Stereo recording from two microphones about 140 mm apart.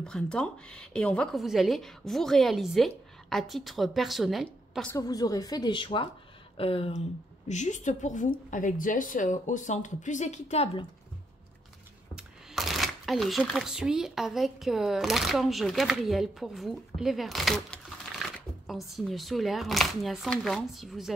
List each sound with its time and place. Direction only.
0.0 s speech: 5° left (ahead or behind)
4.9 s speech: 25° left (ahead or behind)
6.5 s a sound: 40° left (ahead or behind)
7.4 s a woman's voice: 60° left (ahead or behind)
12.2 s speech: centre (ahead or behind)